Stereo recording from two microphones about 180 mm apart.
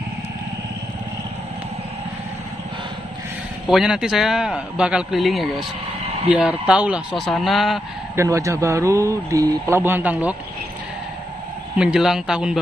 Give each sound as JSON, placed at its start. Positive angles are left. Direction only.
{"t": 3.6, "sound": "a man's voice", "side_deg": -5}
{"t": 8.2, "sound": "a man's voice", "side_deg": -15}
{"t": 11.7, "sound": "a man's voice", "side_deg": -5}